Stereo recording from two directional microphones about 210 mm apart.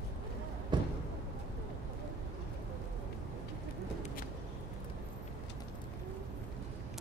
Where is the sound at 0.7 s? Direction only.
20° right (ahead or behind).